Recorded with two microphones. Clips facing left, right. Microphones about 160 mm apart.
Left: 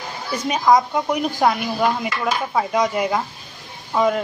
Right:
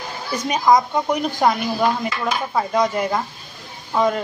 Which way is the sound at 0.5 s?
5° left (ahead or behind).